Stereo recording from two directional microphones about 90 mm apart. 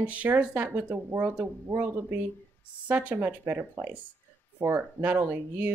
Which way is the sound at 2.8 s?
15° right (ahead or behind).